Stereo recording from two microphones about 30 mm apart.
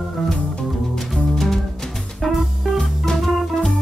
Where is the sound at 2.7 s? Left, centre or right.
Centre.